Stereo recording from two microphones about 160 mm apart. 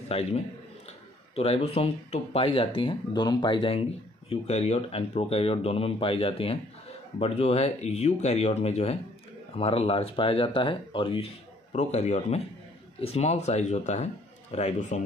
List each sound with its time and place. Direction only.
0.1 s a man's voice: 40° left (ahead or behind)